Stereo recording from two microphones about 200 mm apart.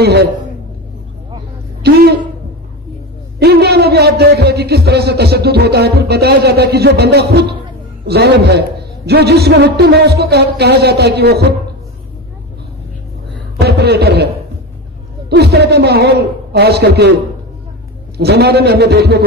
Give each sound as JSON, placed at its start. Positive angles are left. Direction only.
{"t": 0.0, "sound": "a man's voice", "side_deg": -55}
{"t": 1.8, "sound": "a woman's voice", "side_deg": -55}
{"t": 3.3, "sound": "a man's voice", "side_deg": -55}
{"t": 13.6, "sound": "a man's voice", "side_deg": -55}
{"t": 18.1, "sound": "a man's voice", "side_deg": -55}